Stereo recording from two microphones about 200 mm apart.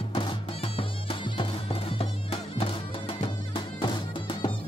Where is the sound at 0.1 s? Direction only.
30° left (ahead or behind).